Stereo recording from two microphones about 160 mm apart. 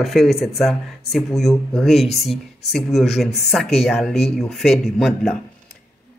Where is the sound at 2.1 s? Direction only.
40° left (ahead or behind).